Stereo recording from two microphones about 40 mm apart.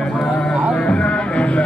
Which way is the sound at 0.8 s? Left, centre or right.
Left.